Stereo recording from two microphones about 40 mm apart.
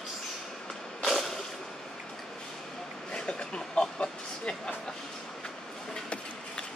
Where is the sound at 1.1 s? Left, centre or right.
Centre.